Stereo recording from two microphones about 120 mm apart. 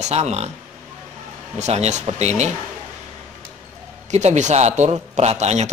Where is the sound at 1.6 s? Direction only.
65° right (ahead or behind).